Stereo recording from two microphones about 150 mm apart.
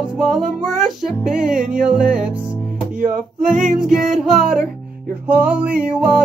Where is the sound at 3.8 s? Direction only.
Centre (ahead or behind).